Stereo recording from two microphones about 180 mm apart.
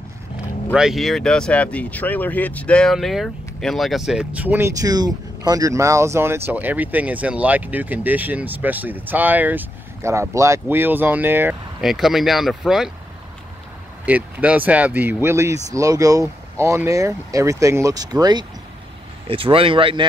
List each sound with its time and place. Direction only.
0.7 s speech: centre (ahead or behind)
14.0 s speech: 10° right (ahead or behind); by 20.1 s 30° right (ahead or behind)